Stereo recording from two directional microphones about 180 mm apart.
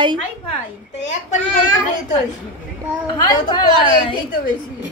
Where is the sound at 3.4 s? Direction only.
25° left (ahead or behind).